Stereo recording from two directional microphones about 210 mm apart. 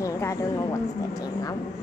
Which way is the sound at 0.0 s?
15° left (ahead or behind).